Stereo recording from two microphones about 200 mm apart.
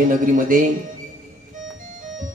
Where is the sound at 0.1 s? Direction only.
45° right (ahead or behind).